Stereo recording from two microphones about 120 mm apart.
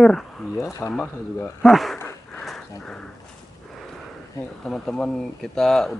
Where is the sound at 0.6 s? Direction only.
25° left (ahead or behind).